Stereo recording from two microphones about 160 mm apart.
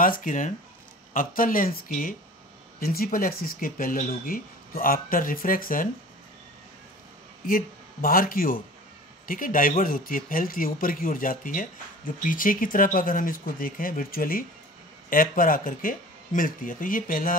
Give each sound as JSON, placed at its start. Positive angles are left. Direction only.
{"t": 0.0, "sound": "speech", "side_deg": 55}
{"t": 7.4, "sound": "speech", "side_deg": 60}